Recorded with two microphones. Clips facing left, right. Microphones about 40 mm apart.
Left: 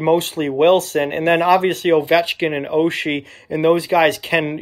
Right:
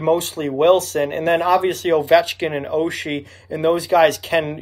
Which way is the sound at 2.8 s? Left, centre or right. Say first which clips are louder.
Left 4 dB; left.